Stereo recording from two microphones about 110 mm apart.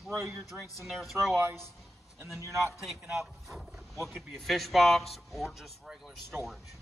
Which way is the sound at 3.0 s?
5° right (ahead or behind).